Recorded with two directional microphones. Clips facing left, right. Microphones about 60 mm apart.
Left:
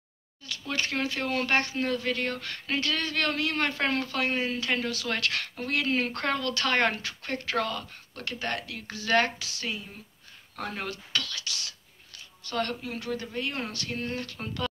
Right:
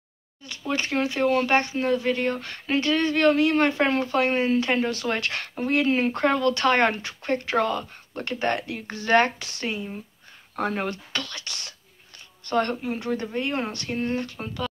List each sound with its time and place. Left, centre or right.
0.7 s a woman's voice: right
9.4 s a woman's voice: right
14.4 s speech: centre